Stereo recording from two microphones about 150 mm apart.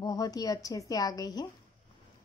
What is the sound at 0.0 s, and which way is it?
A woman's voice, 25° left (ahead or behind).